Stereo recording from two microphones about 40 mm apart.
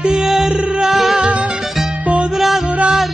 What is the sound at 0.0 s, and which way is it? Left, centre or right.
Music, centre.